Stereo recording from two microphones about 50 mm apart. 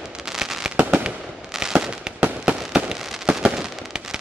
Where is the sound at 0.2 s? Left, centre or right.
Centre.